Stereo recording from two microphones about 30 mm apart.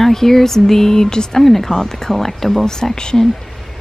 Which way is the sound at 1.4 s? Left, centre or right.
Centre.